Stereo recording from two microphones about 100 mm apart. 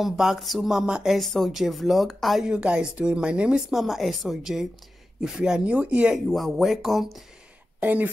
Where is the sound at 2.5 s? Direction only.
10° right (ahead or behind).